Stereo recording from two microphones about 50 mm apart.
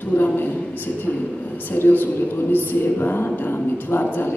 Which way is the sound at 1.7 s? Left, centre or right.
Left.